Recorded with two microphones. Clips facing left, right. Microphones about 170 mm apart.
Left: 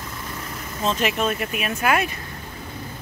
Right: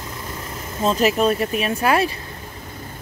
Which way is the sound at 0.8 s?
40° right (ahead or behind).